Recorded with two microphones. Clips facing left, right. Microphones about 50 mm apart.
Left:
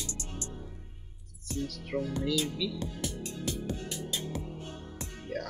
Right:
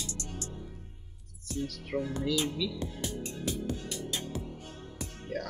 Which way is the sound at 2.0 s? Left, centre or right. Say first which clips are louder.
Even; right.